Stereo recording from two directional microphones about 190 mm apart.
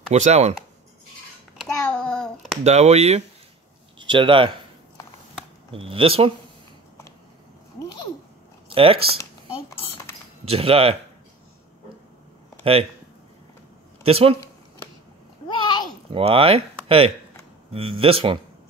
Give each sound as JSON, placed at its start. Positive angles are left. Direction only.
{"t": 0.1, "sound": "speech", "side_deg": -35}
{"t": 1.6, "sound": "child singing", "side_deg": 5}
{"t": 2.6, "sound": "speech", "side_deg": -35}
{"t": 5.7, "sound": "speech", "side_deg": -30}
{"t": 8.6, "sound": "speech", "side_deg": -30}
{"t": 9.2, "sound": "cutlery", "side_deg": 15}
{"t": 10.4, "sound": "speech", "side_deg": -30}
{"t": 14.0, "sound": "speech", "side_deg": -30}
{"t": 15.4, "sound": "a sound", "side_deg": 20}
{"t": 16.1, "sound": "speech", "side_deg": -30}